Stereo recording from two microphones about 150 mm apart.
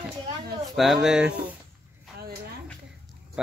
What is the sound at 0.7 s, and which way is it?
Speech, centre (ahead or behind).